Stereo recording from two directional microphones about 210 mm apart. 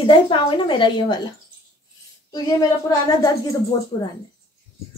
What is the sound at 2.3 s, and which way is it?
A woman's voice, 20° left (ahead or behind).